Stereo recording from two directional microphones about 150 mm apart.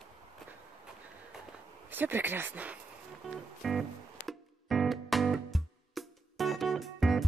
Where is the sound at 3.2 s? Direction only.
Centre (ahead or behind).